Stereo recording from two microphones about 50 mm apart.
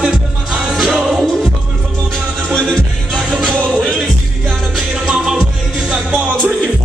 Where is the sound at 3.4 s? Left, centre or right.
Centre.